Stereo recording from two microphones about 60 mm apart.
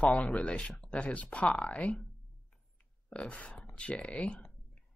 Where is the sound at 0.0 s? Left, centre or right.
Left.